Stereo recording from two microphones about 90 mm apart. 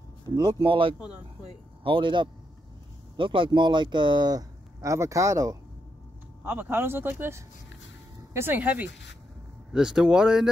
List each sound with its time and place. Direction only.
0.6 s a man's voice: 80° right; by 5.6 s 40° right (ahead or behind)
6.4 s speech: 20° right (ahead or behind)
9.7 s speech: 5° right (ahead or behind)